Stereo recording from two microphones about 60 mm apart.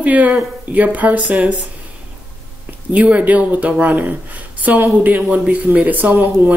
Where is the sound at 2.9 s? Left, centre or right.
Right.